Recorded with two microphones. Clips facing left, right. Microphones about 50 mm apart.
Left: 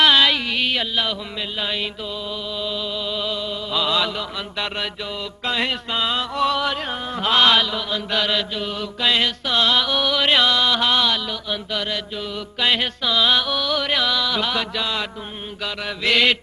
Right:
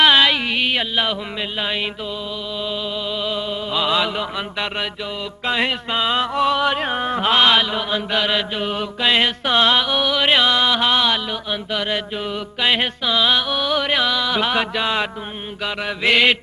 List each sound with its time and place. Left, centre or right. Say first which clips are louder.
0.0 s music: right 2 dB; centre
2.6 s music: right 2 dB; centre
3.3 s mantra: right 2 dB; right
5.4 s music: right 3 dB; centre
7.2 s mantra: even; centre
8.5 s mantra: right 4 dB; right
9.0 s music: right 2 dB; right
9.8 s mantra: right 1 dB; centre
12.5 s music: right 1 dB; centre